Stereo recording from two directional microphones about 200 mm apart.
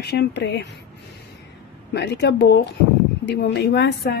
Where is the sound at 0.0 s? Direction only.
55° left (ahead or behind).